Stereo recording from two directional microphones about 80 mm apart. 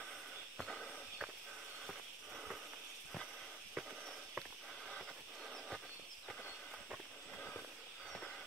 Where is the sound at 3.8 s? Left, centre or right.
Centre.